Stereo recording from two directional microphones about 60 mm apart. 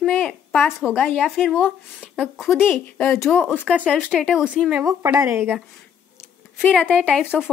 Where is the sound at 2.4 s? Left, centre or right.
Centre.